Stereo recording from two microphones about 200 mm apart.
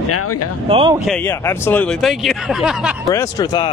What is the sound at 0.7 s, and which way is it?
Speech, 25° right (ahead or behind).